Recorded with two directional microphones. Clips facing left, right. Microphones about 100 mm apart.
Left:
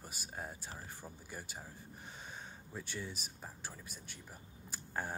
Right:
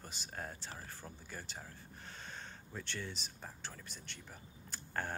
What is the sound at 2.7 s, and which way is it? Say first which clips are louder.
Speech: even; 10° left (ahead or behind).